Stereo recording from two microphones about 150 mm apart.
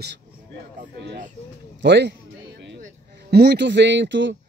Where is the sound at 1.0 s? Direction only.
90° right.